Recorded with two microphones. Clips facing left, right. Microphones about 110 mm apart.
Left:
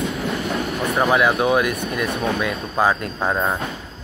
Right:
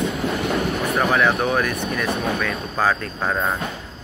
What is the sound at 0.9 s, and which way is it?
Speech, 5° left (ahead or behind).